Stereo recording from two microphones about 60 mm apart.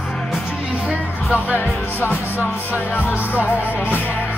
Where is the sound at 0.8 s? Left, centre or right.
Centre.